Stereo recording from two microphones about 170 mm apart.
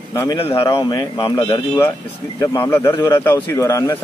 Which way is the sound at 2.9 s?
25° left (ahead or behind).